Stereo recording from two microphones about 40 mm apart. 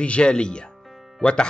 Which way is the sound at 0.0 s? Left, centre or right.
Left.